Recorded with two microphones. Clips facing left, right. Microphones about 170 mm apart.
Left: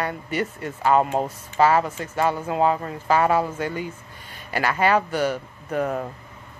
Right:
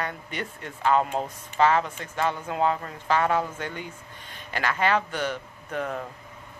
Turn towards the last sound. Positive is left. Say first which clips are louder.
# left 6 dB
turn(degrees=10)  # may be behind; listen again after turning